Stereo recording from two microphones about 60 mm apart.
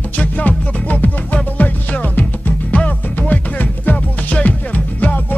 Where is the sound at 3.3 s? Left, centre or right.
Left.